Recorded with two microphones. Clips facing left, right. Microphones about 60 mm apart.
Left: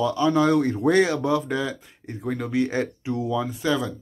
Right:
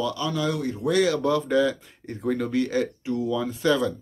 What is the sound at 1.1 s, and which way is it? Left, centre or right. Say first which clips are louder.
Speech: right 1 dB; centre.